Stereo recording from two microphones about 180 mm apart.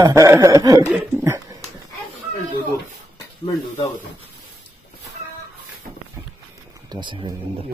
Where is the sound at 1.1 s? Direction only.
15° right (ahead or behind).